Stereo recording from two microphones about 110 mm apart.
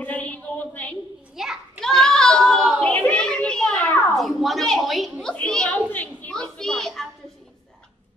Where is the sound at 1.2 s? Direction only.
5° right (ahead or behind).